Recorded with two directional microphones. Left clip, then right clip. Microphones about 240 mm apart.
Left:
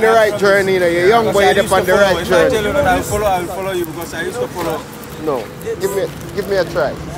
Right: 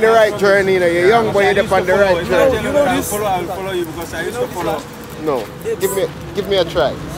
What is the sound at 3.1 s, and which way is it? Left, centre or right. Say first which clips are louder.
Speech: left 2 dB; centre.